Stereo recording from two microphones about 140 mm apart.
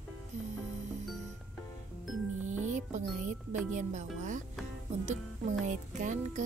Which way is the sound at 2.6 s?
60° right (ahead or behind).